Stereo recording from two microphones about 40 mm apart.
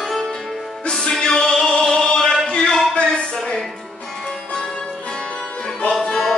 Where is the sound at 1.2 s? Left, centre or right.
Centre.